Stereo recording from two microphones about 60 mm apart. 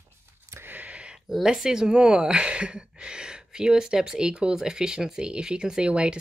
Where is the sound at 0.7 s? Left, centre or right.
Right.